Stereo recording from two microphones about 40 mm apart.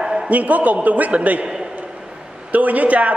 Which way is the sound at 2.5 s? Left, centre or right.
Right.